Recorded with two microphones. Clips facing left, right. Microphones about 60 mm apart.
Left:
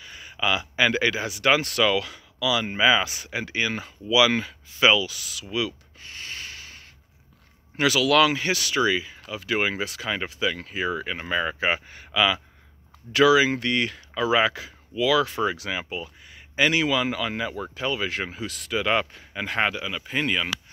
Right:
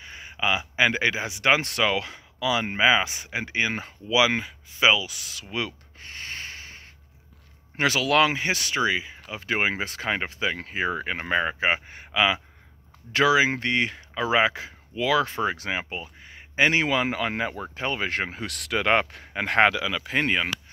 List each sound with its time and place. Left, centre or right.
0.0 s speech: right
9.3 s speech: right
18.5 s speech: right
19.7 s speech: right
20.2 s speech: right